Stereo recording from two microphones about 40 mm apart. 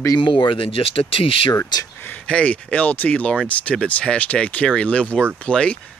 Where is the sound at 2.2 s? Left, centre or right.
Left.